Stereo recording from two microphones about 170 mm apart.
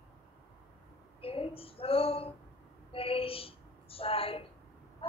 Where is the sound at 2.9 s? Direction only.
35° left (ahead or behind).